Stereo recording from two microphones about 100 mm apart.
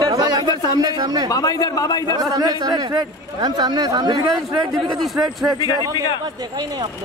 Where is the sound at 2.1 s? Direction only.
40° right (ahead or behind).